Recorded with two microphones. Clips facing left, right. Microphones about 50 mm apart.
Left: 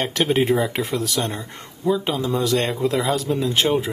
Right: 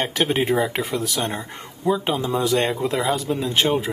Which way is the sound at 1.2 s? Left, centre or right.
Centre.